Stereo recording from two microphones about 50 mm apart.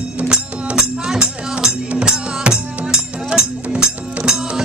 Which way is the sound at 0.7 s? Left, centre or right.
Centre.